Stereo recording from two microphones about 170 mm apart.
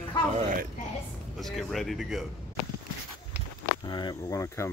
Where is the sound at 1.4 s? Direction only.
Centre (ahead or behind).